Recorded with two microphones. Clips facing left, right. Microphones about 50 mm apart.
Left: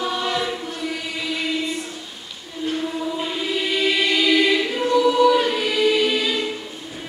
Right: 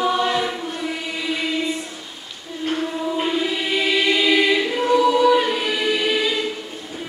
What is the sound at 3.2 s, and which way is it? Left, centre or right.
Choir, centre.